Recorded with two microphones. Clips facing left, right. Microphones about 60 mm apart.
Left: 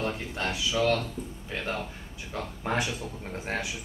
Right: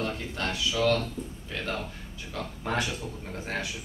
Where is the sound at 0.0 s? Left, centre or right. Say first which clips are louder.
Left 1 dB; centre.